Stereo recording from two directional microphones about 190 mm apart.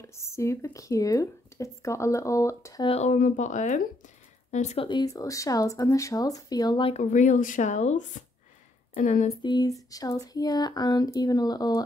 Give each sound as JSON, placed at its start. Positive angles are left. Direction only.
{"t": 0.0, "sound": "speech", "side_deg": 15}
{"t": 2.9, "sound": "speech", "side_deg": 35}
{"t": 4.8, "sound": "speech", "side_deg": 20}
{"t": 9.4, "sound": "speech", "side_deg": 20}